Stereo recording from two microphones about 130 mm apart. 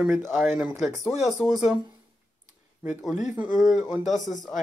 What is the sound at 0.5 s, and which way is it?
Speech, 15° right (ahead or behind).